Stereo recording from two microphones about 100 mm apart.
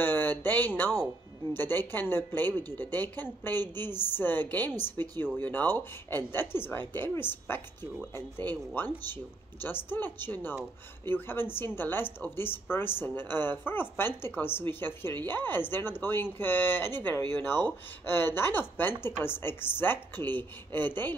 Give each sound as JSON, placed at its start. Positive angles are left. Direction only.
{"t": 0.0, "sound": "a woman's voice", "side_deg": 20}